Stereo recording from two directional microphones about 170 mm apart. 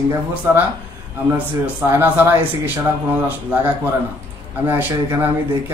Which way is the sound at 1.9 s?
10° right (ahead or behind).